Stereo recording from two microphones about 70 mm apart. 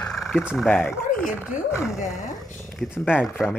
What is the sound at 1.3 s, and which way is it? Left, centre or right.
Speech, right.